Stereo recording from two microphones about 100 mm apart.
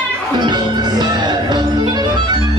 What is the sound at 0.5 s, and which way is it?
Music, 45° right (ahead or behind).